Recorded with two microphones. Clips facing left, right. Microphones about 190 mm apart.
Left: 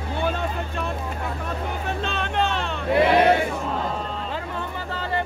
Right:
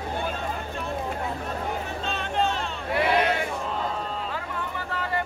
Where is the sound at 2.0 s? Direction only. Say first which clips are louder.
Left 1 dB; 70° left (ahead or behind).